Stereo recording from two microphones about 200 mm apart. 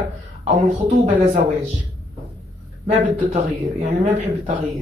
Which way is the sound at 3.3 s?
30° right (ahead or behind).